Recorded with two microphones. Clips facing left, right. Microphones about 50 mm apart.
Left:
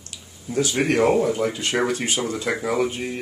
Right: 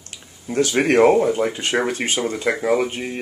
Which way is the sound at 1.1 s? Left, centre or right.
Right.